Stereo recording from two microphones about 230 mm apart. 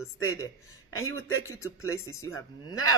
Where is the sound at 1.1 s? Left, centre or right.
Centre.